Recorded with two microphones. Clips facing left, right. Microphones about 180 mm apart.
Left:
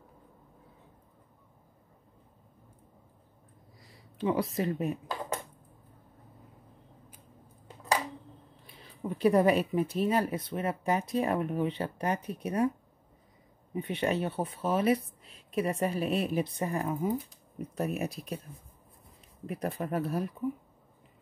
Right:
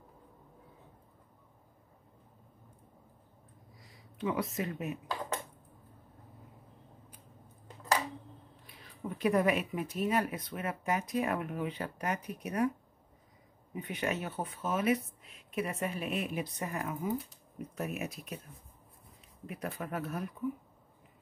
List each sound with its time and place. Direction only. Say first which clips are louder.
4.2 s speech: left 4 dB; 35° left (ahead or behind)
8.6 s speech: left 4 dB; 30° left (ahead or behind)
13.7 s speech: left 5 dB; 30° left (ahead or behind)
19.4 s speech: left 5 dB; 35° left (ahead or behind)